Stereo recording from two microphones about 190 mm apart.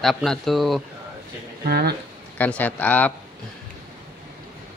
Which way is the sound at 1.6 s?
55° right (ahead or behind).